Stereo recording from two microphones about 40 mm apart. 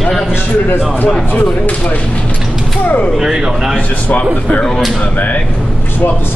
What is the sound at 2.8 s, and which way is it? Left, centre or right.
Speech, left.